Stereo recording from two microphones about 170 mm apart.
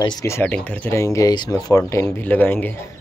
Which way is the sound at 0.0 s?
20° left (ahead or behind).